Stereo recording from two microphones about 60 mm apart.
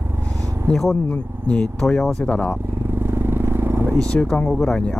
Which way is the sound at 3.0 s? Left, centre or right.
Right.